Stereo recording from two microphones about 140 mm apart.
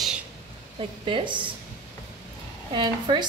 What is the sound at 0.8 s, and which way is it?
Speech, 35° right (ahead or behind).